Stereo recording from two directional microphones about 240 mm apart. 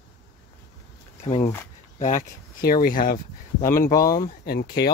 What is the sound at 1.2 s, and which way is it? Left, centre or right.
Speech, left.